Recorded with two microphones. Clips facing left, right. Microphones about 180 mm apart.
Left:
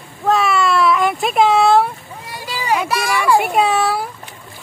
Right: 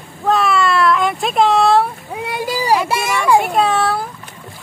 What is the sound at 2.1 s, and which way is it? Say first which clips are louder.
Boat: right 9 dB; 70° right (ahead or behind).